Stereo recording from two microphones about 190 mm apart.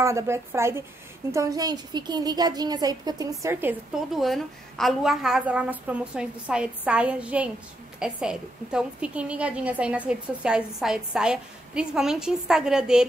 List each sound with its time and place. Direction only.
0.0 s a woman's voice: 15° right (ahead or behind)
4.2 s a woman's voice: centre (ahead or behind)